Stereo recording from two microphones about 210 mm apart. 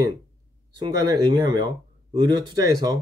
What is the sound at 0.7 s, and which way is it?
Speech, 20° right (ahead or behind).